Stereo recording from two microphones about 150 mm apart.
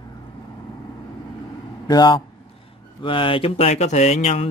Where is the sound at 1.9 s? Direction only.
30° left (ahead or behind).